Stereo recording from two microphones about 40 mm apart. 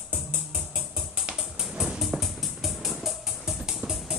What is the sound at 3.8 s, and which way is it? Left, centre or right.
Music, right.